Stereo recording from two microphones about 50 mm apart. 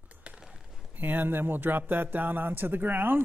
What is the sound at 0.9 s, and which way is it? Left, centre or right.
Speech, right.